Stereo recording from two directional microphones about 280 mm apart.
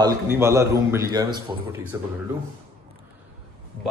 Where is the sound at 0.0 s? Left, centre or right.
Centre.